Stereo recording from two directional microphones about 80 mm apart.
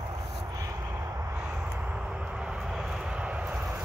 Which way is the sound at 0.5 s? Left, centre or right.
Right.